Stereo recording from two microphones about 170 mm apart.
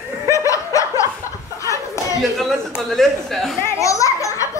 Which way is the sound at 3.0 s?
Centre (ahead or behind).